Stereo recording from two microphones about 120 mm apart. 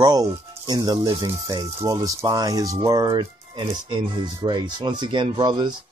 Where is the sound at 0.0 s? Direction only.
35° right (ahead or behind).